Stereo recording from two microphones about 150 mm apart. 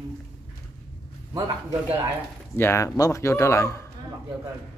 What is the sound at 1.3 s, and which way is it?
Speech, 20° right (ahead or behind).